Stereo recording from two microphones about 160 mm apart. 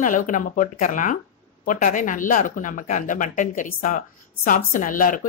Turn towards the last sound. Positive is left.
turn(degrees=55)  # may be behind; listen again after turning